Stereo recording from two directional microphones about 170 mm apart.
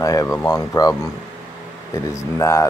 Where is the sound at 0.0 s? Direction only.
20° left (ahead or behind).